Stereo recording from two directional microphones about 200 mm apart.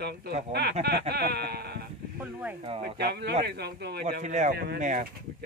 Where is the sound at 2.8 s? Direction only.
55° right (ahead or behind).